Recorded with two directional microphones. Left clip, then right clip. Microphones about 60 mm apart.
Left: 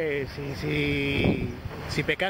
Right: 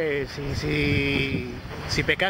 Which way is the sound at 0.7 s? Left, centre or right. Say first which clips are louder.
Right 3 dB; centre.